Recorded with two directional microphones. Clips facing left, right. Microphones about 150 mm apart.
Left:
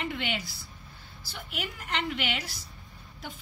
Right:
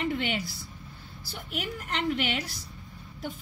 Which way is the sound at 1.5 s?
40° right (ahead or behind).